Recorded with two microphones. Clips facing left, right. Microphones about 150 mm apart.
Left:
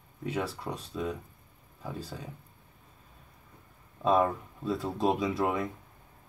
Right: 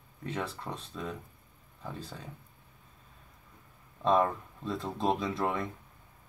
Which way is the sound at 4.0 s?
5° left (ahead or behind).